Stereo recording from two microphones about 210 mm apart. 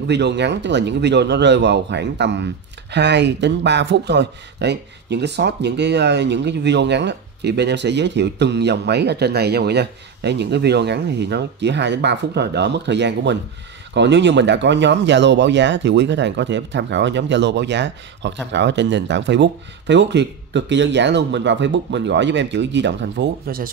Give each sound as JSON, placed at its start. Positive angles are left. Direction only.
{"t": 0.1, "sound": "speech", "side_deg": -55}